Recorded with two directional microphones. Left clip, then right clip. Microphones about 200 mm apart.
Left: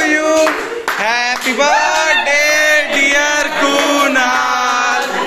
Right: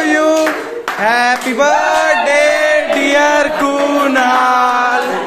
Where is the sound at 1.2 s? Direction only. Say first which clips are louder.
Right 2 dB; 35° right (ahead or behind).